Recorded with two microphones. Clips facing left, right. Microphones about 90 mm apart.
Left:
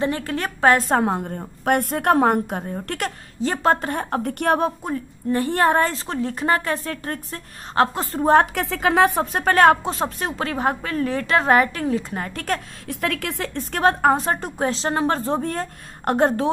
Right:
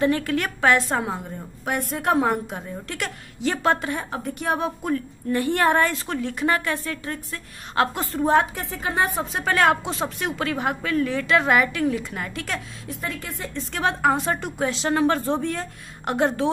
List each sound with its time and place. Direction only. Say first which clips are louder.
0.0 s a woman's voice: right 2 dB; 30° left (ahead or behind); by 4.6 s 60° left (ahead or behind)
4.8 s speech: even; 30° left (ahead or behind)
8.5 s speech: left 7 dB; 90° left; by 12.6 s 45° left (ahead or behind)
12.8 s speech: left 6 dB; 75° left (ahead or behind)
13.7 s speech: left 4 dB; 45° left (ahead or behind)
15.4 s a woman's voice: left 1 dB; 45° left (ahead or behind)